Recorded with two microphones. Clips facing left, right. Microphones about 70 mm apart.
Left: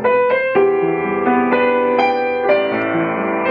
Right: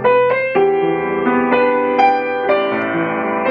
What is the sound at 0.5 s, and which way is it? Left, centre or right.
Music, centre.